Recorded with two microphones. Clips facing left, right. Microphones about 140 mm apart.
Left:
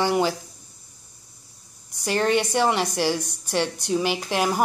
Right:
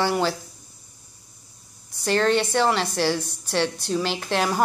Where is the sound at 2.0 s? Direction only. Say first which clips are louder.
Right 1 dB; 10° left (ahead or behind).